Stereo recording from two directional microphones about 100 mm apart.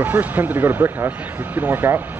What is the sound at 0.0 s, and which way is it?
Speech, 15° right (ahead or behind).